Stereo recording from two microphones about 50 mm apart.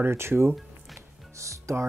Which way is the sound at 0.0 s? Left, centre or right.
Right.